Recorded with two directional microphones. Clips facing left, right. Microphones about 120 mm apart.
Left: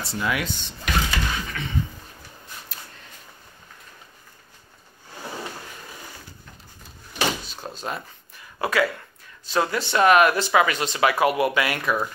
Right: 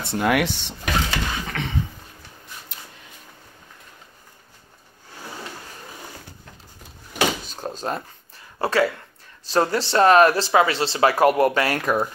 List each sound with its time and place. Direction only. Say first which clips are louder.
0.0 s drawer open or close: right 6 dB; 60° right (ahead or behind); by 1.7 s 80° right
2.7 s a sound: even; 25° right (ahead or behind)
7.2 s door: right 3 dB; 40° right (ahead or behind)
8.5 s speech: right 2 dB; 30° right (ahead or behind)